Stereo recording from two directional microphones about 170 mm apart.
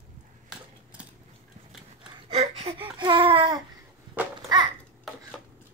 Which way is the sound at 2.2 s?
35° right (ahead or behind).